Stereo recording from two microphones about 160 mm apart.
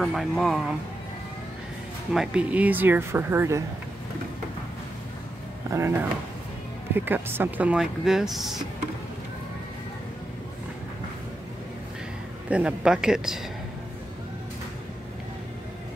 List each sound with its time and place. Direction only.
0.0 s speech: centre (ahead or behind)
2.1 s speech: 5° right (ahead or behind)
5.7 s speech: 15° right (ahead or behind)
7.1 s speech: 15° right (ahead or behind)
12.4 s speech: 5° right (ahead or behind)